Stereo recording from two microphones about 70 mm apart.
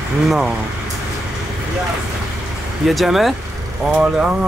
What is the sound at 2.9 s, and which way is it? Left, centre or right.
Speech, centre.